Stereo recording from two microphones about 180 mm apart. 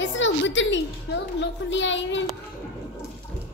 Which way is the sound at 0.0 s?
90° left.